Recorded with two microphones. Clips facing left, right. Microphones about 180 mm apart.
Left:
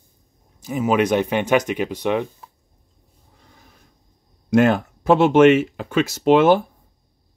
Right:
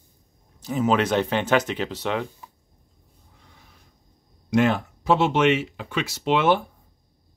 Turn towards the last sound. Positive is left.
turn(degrees=45)  # may be behind; listen again after turning